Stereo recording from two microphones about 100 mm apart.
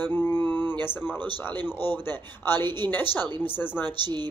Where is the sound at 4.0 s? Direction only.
45° right (ahead or behind).